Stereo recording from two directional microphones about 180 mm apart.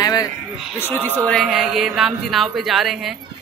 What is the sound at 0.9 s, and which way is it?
A woman's voice, 10° left (ahead or behind).